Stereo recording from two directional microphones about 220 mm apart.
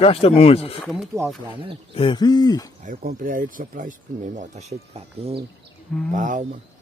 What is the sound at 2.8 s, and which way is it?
Speech, 40° right (ahead or behind).